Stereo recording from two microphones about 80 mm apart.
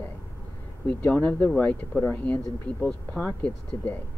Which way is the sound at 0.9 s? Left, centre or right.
Centre.